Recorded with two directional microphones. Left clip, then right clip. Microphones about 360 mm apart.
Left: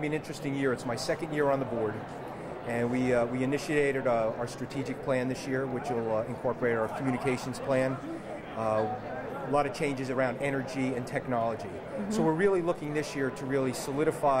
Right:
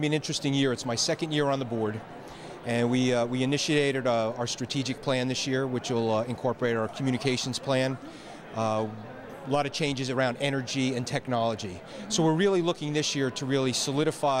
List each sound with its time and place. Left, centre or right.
0.0 s a man's voice: right
2.7 s a man's voice: right